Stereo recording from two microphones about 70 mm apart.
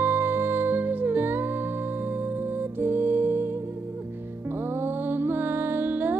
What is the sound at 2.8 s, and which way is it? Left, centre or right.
Music, right.